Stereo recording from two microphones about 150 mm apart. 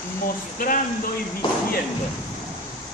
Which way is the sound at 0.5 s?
65° left (ahead or behind).